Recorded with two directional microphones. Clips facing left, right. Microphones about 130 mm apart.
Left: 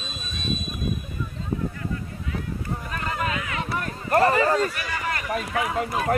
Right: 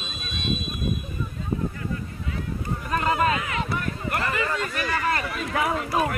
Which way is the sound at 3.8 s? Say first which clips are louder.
Left 7 dB; 40° left (ahead or behind).